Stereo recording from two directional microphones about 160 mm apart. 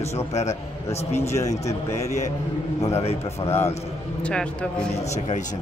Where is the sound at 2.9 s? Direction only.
40° left (ahead or behind).